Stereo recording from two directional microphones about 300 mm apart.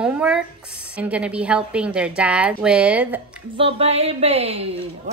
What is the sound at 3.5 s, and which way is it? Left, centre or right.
A woman's voice, centre.